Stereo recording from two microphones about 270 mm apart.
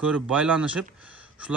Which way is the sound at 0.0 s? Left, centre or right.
Centre.